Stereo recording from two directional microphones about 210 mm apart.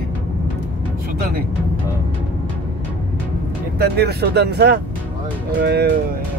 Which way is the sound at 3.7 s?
50° right (ahead or behind).